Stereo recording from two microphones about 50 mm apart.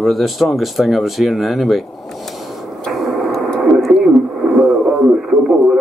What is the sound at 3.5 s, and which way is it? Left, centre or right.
Radio, centre.